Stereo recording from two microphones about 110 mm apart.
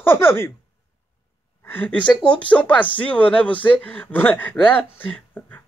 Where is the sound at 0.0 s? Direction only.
20° left (ahead or behind).